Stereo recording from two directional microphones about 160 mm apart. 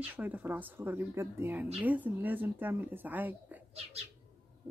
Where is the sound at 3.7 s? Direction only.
40° right (ahead or behind).